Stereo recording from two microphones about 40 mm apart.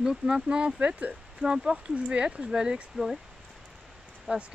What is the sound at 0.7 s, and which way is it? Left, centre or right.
Speech, right.